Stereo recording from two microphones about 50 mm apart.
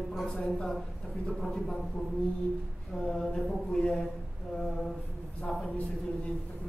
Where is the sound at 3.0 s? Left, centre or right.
Centre.